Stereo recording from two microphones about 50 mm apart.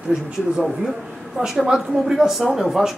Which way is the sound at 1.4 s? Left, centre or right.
Centre.